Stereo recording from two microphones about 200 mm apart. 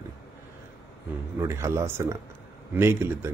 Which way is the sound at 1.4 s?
15° right (ahead or behind).